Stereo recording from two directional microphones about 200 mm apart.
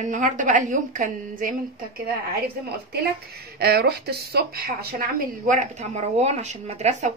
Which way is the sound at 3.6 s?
50° right (ahead or behind).